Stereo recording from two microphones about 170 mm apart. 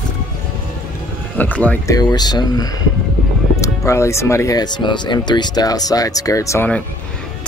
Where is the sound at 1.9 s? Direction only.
25° left (ahead or behind).